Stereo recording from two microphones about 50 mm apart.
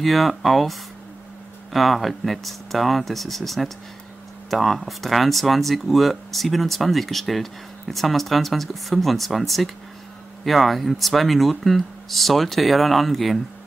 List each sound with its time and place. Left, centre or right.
0.0 s speech: centre